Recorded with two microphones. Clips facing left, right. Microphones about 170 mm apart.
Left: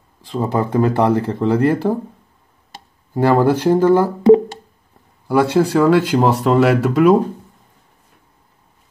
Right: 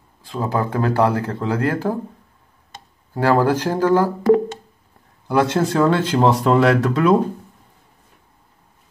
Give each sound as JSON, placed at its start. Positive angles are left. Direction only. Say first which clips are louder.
{"t": 0.2, "sound": "speech", "louder": "left 3 dB", "side_deg": 20}
{"t": 3.2, "sound": "speech", "louder": "left 3 dB", "side_deg": 15}
{"t": 5.3, "sound": "speech", "louder": "left 3 dB", "side_deg": 5}